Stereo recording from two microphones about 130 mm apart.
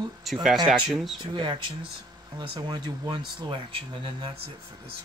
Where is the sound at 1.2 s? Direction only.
40° right (ahead or behind).